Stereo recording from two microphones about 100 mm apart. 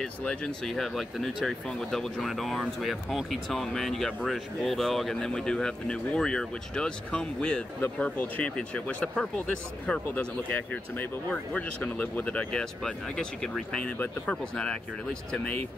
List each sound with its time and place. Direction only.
0.0 s speech: 10° left (ahead or behind)